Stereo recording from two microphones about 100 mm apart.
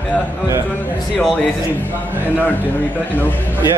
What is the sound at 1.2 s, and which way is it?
Speech, 5° left (ahead or behind).